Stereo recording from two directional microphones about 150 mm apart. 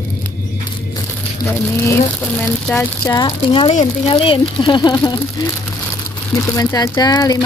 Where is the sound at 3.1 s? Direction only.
25° left (ahead or behind).